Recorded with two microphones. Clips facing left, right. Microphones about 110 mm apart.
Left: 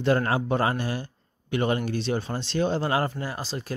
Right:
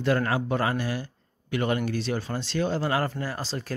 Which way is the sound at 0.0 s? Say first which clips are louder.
Left 2 dB; 25° left (ahead or behind).